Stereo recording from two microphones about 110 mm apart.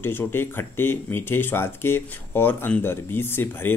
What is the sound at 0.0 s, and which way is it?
Speech, 20° left (ahead or behind).